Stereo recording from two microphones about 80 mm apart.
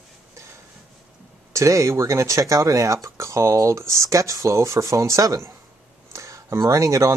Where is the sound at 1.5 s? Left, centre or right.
Right.